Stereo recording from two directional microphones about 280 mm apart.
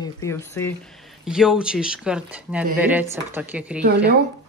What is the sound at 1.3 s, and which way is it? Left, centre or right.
Speech, centre.